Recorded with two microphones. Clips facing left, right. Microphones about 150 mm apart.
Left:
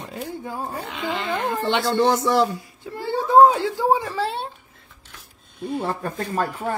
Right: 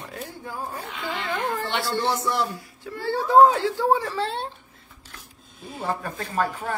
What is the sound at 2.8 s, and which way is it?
A man's voice, 20° left (ahead or behind).